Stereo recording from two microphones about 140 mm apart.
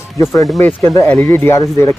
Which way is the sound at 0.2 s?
20° left (ahead or behind).